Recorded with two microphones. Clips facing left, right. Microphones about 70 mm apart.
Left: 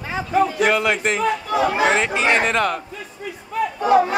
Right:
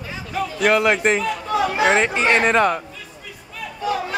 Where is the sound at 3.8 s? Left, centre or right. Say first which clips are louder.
Left 8 dB; left.